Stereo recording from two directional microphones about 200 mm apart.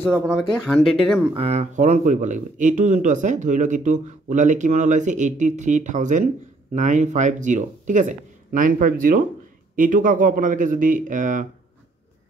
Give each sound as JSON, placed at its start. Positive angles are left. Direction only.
{"t": 0.1, "sound": "speech", "side_deg": -5}
{"t": 1.3, "sound": "speech", "side_deg": -30}